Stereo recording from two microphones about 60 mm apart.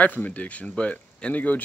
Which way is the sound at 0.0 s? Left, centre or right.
Left.